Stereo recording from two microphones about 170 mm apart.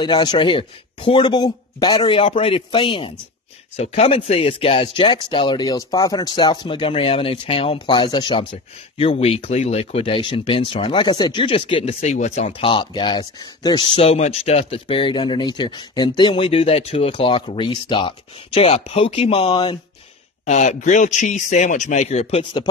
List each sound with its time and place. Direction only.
0.0 s speech: 25° left (ahead or behind)
20.4 s a man's voice: 45° left (ahead or behind)
22.4 s speech: 25° left (ahead or behind)